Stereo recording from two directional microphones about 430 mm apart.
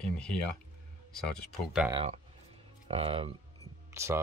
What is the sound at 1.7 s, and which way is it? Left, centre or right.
Speech, centre.